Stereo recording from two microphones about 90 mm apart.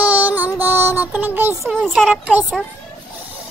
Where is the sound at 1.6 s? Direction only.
5° right (ahead or behind).